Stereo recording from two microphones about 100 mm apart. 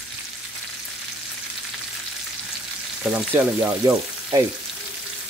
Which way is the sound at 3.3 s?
20° right (ahead or behind).